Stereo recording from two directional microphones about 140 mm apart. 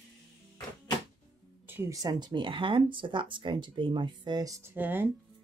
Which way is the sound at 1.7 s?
20° right (ahead or behind).